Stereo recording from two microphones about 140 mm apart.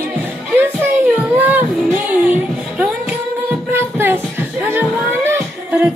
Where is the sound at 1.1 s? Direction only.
10° right (ahead or behind).